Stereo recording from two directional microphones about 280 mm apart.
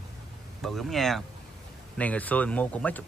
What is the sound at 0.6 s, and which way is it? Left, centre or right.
Speech, centre.